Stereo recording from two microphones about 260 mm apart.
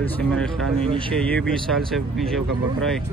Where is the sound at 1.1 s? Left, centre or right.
Centre.